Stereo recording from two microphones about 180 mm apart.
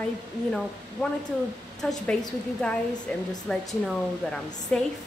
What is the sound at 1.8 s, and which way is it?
Speech, 5° left (ahead or behind).